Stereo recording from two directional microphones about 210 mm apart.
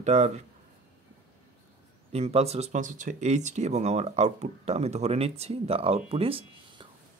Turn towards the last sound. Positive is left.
turn(degrees=-25)  # may be behind; listen again after turning